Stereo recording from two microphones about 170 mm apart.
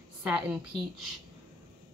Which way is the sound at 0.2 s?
5° right (ahead or behind).